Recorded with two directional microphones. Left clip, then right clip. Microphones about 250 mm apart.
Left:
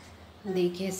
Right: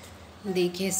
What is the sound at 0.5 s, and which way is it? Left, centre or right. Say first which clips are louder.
Speech: right 2 dB; centre.